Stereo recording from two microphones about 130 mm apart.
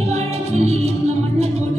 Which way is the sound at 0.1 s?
55° right (ahead or behind).